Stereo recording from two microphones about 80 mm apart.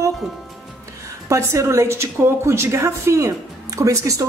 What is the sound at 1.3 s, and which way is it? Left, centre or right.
A woman's voice, right.